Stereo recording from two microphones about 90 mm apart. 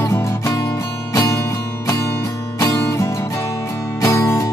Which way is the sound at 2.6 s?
30° left (ahead or behind).